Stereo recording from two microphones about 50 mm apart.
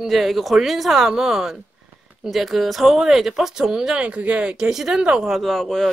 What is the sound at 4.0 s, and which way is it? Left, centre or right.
Speech, right.